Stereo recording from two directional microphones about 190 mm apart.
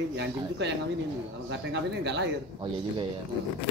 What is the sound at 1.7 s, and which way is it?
Speech, 65° right (ahead or behind).